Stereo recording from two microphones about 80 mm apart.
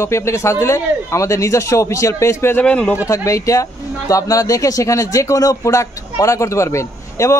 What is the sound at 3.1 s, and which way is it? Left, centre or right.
Speech, left.